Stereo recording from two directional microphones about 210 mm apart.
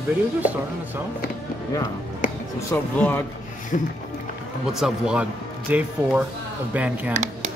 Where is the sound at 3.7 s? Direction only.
35° left (ahead or behind).